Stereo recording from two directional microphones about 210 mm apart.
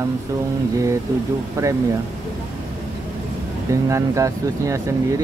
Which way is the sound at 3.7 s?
15° right (ahead or behind).